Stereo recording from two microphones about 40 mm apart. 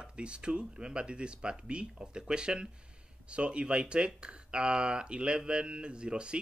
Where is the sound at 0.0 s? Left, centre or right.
Right.